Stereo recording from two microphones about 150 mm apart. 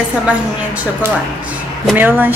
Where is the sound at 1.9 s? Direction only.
10° right (ahead or behind).